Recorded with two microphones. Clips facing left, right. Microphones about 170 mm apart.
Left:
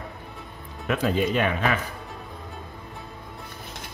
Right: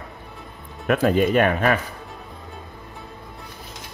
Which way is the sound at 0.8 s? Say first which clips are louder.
Right 5 dB; 55° right (ahead or behind).